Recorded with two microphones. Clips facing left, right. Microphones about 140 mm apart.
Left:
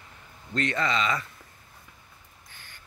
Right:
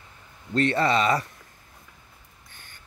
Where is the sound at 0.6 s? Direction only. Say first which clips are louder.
Right 5 dB; 35° right (ahead or behind).